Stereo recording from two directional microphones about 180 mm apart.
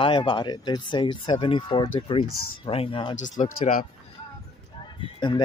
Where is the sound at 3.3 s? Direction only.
45° left (ahead or behind).